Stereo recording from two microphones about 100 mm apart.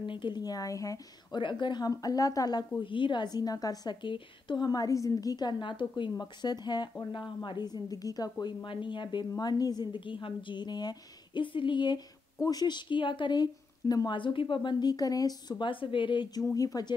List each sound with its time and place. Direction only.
0.0 s speech: 55° left (ahead or behind); by 1.0 s 35° left (ahead or behind)
1.3 s speech: 50° left (ahead or behind)
1.9 s speech: 40° left (ahead or behind)
2.8 s speech: 55° left (ahead or behind)
4.6 s speech: 35° left (ahead or behind)
8.6 s speech: 50° left (ahead or behind)
12.4 s speech: 40° left (ahead or behind)
15.6 s a woman's voice: 60° left (ahead or behind)
16.4 s speech: 35° left (ahead or behind)